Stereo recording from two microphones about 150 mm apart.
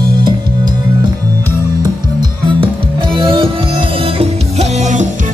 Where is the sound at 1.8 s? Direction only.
30° right (ahead or behind); by 5.1 s 50° right (ahead or behind).